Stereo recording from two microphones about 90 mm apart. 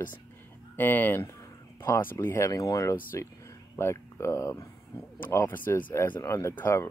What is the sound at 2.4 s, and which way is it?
Speech, 40° left (ahead or behind).